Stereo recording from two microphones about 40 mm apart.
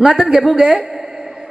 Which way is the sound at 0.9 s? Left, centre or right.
Centre.